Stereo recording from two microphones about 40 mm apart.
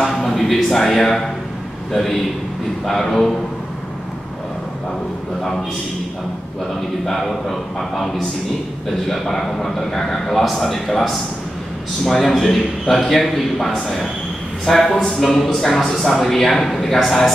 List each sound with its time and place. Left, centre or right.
0.0 s a sound: centre
2.8 s a man's voice: centre
7.2 s a man's voice: centre
12.2 s a man's voice: centre